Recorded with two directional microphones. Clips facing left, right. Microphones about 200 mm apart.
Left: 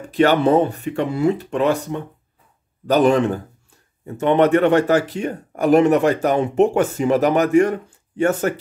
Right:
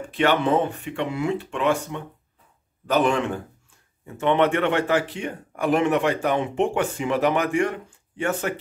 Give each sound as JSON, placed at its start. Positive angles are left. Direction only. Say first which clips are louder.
{"t": 0.1, "sound": "a man's voice", "louder": "left 6 dB", "side_deg": 40}